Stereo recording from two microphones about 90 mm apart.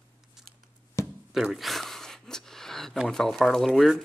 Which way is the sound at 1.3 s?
Centre (ahead or behind).